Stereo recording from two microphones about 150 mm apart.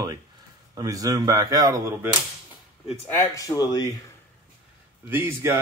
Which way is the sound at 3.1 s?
20° left (ahead or behind).